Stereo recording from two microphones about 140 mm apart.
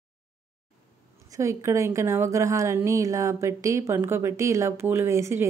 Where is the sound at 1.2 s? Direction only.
20° right (ahead or behind).